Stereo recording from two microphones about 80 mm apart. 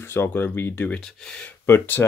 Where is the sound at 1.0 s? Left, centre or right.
Centre.